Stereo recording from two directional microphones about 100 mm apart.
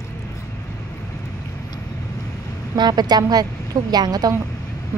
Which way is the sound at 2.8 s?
45° right (ahead or behind).